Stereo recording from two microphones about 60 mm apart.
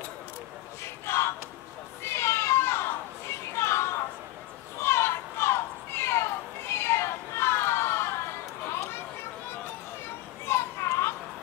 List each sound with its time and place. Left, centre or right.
0.8 s a sound: left
2.0 s cat: left
4.8 s children playing: left
8.6 s chatter: left
10.0 s children playing: left